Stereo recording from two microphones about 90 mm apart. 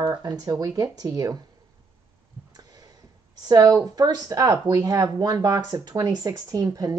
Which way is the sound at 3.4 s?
45° right (ahead or behind).